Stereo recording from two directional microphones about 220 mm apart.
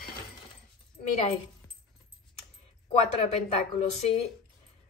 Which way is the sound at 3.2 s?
30° left (ahead or behind).